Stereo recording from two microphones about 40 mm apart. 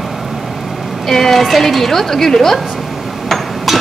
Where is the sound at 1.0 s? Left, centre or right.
Centre.